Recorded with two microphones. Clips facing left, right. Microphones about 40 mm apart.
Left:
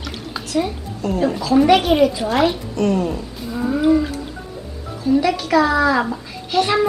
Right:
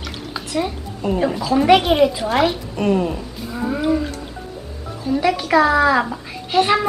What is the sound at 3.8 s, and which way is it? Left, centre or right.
Music, centre.